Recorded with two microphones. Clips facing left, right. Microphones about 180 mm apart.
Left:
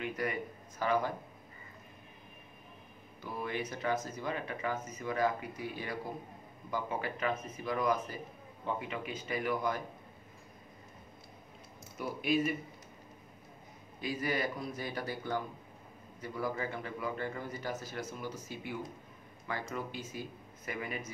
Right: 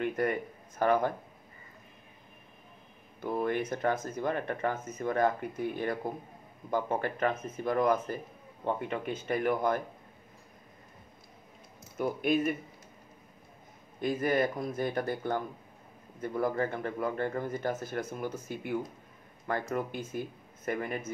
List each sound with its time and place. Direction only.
0.0 s speech: 55° right (ahead or behind)
3.2 s speech: 50° right (ahead or behind)
12.0 s speech: 50° right (ahead or behind)
14.0 s speech: 50° right (ahead or behind)